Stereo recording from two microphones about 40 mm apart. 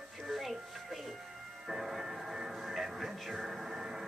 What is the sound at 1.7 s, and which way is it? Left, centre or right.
Music, centre.